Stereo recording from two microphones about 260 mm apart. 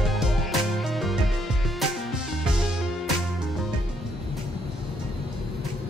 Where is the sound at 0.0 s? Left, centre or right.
Centre.